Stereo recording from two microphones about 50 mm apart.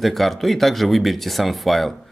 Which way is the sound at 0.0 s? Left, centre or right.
Centre.